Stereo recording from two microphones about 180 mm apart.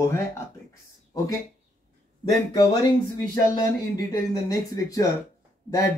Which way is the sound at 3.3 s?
20° left (ahead or behind).